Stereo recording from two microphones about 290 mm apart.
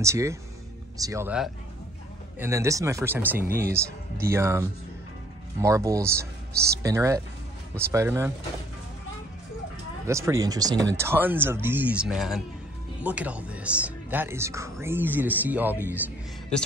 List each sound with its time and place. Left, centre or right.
0.0 s speech: centre
3.4 s speech: right
3.7 s speech: centre
10.0 s speech: centre